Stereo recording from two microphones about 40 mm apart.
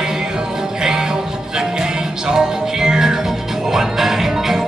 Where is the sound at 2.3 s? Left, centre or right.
Centre.